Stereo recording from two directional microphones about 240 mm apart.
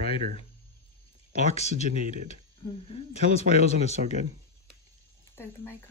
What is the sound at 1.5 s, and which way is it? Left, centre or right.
Speech, left.